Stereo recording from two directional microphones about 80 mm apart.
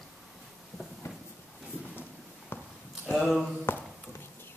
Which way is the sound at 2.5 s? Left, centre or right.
Left.